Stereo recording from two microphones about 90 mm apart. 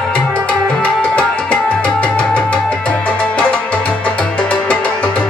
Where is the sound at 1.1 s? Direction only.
15° left (ahead or behind).